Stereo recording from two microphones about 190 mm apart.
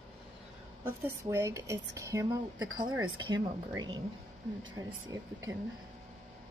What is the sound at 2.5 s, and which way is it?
Speech, 90° right.